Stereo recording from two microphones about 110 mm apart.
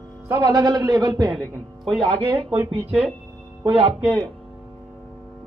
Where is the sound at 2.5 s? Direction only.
15° right (ahead or behind).